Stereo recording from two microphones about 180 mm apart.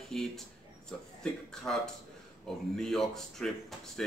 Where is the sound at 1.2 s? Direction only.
5° left (ahead or behind).